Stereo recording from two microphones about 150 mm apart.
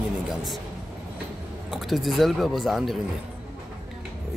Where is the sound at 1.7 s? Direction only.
Centre (ahead or behind).